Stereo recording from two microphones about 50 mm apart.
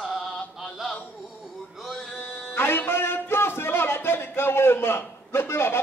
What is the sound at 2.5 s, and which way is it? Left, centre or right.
Music, left.